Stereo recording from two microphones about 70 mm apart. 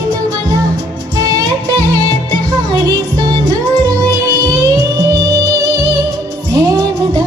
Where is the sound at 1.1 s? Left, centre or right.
Right.